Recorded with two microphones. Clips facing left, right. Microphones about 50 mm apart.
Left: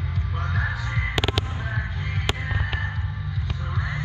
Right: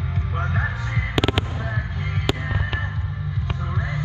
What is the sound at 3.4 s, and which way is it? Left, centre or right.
Music, right.